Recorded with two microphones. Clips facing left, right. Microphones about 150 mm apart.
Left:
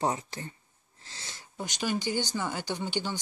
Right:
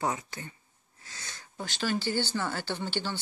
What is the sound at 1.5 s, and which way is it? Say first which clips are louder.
Speech: even; 10° left (ahead or behind).